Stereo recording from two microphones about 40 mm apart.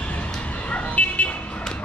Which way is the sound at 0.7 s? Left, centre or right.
Left.